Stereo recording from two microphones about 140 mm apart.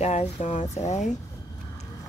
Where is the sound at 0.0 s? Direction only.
50° left (ahead or behind).